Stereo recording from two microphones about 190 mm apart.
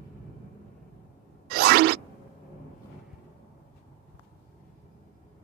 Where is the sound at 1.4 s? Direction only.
55° right (ahead or behind).